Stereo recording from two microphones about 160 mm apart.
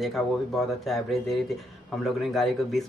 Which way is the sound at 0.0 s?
Centre (ahead or behind).